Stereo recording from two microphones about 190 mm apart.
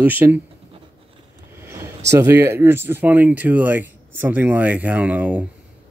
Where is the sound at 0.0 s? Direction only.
10° right (ahead or behind).